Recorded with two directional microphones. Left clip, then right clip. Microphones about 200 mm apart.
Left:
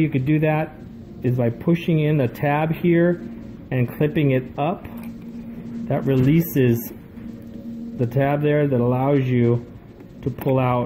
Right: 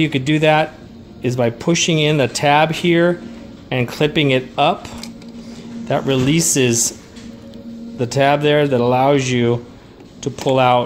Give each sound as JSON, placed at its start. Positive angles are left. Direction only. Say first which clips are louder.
{"t": 0.0, "sound": "speech", "louder": "right 5 dB", "side_deg": -20}
{"t": 5.9, "sound": "speech", "louder": "right 4 dB", "side_deg": -15}
{"t": 8.0, "sound": "speech", "louder": "right 6 dB", "side_deg": -15}